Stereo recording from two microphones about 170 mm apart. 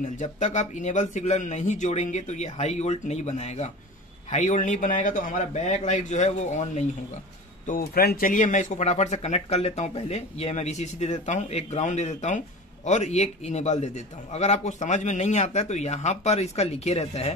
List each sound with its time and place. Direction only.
0.1 s speech: 45° left (ahead or behind)
7.6 s speech: 60° left (ahead or behind); by 17.3 s 35° left (ahead or behind)